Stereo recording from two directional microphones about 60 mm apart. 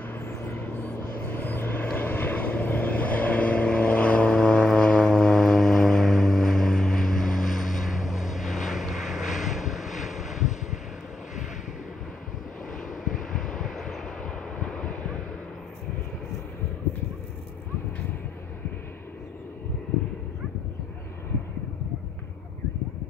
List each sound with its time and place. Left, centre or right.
0.5 s vehicle: left; by 10.5 s centre
12.8 s vehicle: centre